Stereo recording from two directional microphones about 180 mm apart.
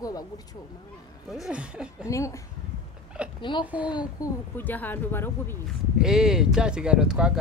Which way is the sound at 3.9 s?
25° left (ahead or behind).